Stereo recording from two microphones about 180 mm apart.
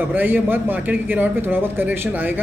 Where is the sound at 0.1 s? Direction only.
10° right (ahead or behind).